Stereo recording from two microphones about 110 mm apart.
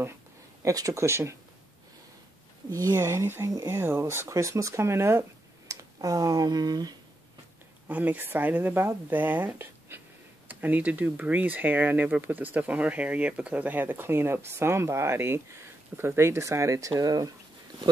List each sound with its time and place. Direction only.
0.6 s speech: 30° right (ahead or behind)
3.0 s speech: 25° right (ahead or behind); by 7.0 s 40° right (ahead or behind)
7.9 s speech: 15° right (ahead or behind); by 17.3 s 35° right (ahead or behind)